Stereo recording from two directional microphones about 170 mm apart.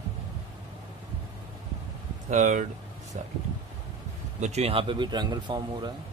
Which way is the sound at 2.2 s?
45° right (ahead or behind).